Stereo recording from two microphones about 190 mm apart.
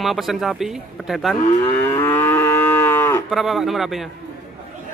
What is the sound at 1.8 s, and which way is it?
Moo, 10° left (ahead or behind).